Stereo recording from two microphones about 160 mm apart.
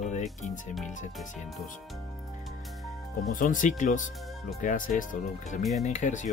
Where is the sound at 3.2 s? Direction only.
55° left (ahead or behind).